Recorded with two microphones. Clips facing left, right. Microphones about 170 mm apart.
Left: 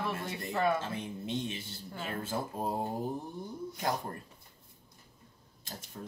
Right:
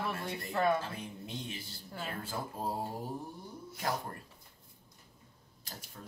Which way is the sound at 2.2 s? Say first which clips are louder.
Left 5 dB; 25° left (ahead or behind).